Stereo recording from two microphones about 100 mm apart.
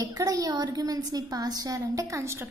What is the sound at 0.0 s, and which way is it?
A woman's voice, 35° right (ahead or behind).